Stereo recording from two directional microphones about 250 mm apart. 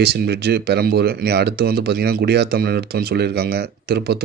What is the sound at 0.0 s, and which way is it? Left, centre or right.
Speech, right.